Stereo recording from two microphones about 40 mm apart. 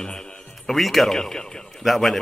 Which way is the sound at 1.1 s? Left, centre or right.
Centre.